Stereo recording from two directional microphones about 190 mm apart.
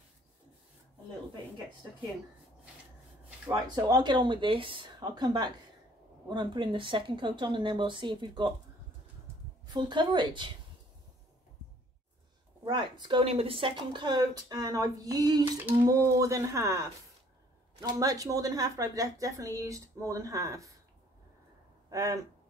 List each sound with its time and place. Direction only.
3.3 s a woman's voice: 15° right (ahead or behind)
9.7 s a woman's voice: 25° right (ahead or behind)
12.6 s a woman's voice: 25° right (ahead or behind)
21.9 s a woman's voice: 15° right (ahead or behind)